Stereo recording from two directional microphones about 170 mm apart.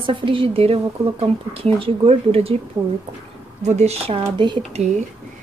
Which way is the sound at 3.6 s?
40° right (ahead or behind).